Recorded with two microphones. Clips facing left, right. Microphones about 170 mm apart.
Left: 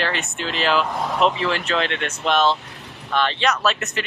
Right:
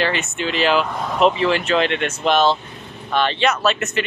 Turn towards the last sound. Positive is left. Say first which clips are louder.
# right 3 dB
turn(degrees=0)  # may be behind; listen again after turning